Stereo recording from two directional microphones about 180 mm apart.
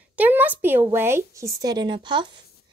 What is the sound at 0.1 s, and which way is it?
A woman's voice, 10° right (ahead or behind).